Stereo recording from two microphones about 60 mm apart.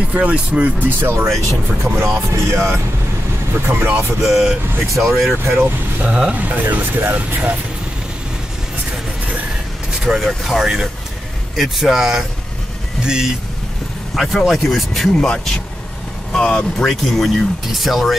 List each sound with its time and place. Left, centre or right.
0.1 s speech: right
0.8 s speech: right
3.6 s speech: right
4.2 s speech: centre
4.9 s speech: right
5.4 s speech: right
6.0 s speech: centre
6.3 s speech: right
10.0 s speech: centre
14.1 s speech: centre
15.1 s speech: centre